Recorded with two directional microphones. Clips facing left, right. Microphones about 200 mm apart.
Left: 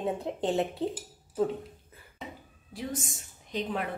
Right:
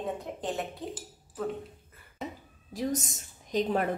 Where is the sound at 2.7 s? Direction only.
40° right (ahead or behind).